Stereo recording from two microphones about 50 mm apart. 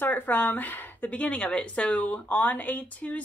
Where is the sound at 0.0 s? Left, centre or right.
Left.